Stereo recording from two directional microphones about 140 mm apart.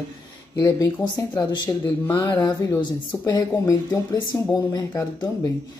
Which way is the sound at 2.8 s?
30° left (ahead or behind).